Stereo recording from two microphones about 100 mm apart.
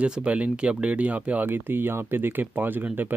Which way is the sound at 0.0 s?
10° right (ahead or behind).